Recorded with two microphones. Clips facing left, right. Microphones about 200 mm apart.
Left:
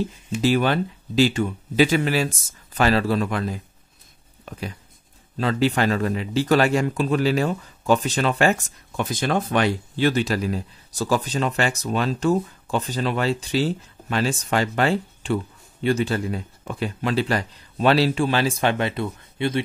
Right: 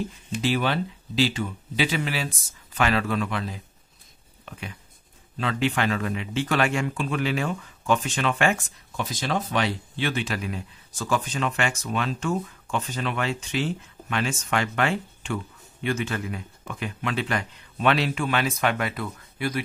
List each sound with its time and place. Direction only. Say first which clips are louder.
0.4 s speech: left 5 dB; 45° left (ahead or behind)
8.9 s speech: left 5 dB; 55° left (ahead or behind); by 19.6 s 25° left (ahead or behind)